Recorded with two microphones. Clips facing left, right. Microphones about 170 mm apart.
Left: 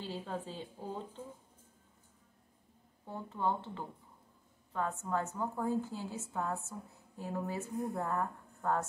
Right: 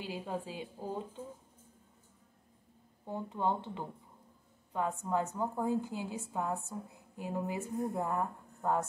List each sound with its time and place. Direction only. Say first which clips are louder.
0.0 s a woman's voice: right 2 dB; 10° right (ahead or behind)
3.1 s a woman's voice: right 2 dB; 15° right (ahead or behind)